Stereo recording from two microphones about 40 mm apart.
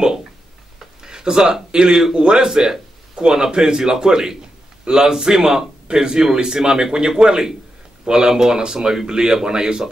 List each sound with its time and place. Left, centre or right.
1.0 s a man's voice: centre